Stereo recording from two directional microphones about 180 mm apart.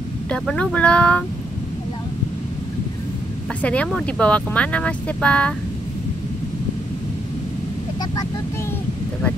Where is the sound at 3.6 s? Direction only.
5° left (ahead or behind).